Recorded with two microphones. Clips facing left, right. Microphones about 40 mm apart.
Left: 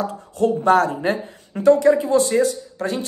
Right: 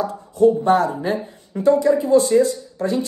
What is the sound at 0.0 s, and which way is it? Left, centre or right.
Speech, left.